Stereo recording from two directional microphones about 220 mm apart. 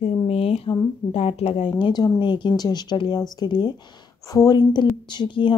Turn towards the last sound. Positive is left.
turn(degrees=20)  # may be behind; listen again after turning